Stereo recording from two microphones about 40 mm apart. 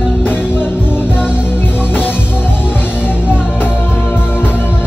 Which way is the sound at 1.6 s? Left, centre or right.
Left.